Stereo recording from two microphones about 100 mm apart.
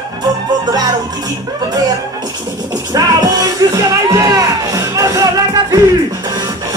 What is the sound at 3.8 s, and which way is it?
Music, 35° right (ahead or behind).